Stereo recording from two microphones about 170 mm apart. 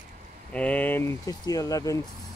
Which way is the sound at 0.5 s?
10° left (ahead or behind).